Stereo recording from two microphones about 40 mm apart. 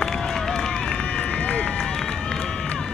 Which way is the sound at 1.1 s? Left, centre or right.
Left.